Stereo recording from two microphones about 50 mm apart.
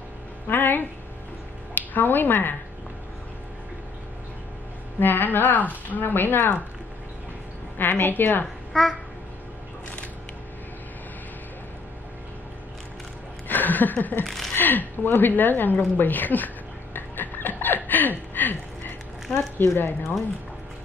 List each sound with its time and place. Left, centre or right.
0.5 s music: left
1.8 s speech: left
5.0 s a woman's voice: left
7.7 s a woman's voice: left
8.7 s babbling: centre
13.5 s a sound: left
14.2 s speech: centre
14.5 s a woman's voice: left
16.9 s a sound: left
19.3 s a woman's voice: left